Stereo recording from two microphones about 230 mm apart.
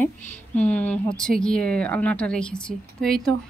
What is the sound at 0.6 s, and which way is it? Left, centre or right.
Speech, centre.